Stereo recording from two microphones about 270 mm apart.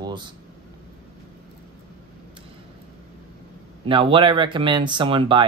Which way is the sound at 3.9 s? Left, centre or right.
Centre.